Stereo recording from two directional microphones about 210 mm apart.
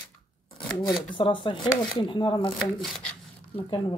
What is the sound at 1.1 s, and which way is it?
Speech, 25° left (ahead or behind).